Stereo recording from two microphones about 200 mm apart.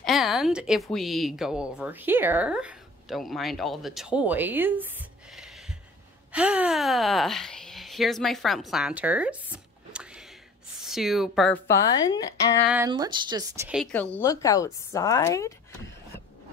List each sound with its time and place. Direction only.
0.0 s a woman's voice: centre (ahead or behind)
11.6 s a woman's voice: 15° left (ahead or behind)
12.8 s speech: 20° right (ahead or behind)
13.9 s a woman's voice: 10° left (ahead or behind)